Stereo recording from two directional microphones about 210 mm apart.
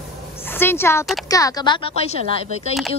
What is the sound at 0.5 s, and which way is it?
A woman's voice, 10° left (ahead or behind).